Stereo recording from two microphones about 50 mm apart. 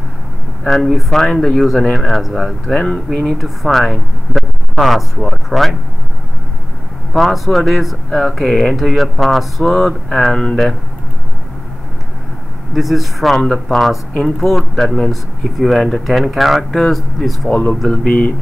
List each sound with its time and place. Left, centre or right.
1.1 s speech: centre
7.2 s speech: centre
12.7 s speech: centre
17.5 s speech: left